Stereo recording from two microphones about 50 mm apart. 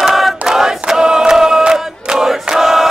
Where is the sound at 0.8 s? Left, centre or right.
Centre.